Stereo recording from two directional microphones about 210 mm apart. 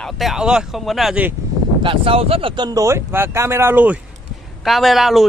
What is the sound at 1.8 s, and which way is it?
Speech, 25° right (ahead or behind).